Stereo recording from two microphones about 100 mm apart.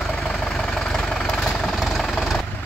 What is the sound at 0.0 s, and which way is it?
Vehicle, 5° left (ahead or behind).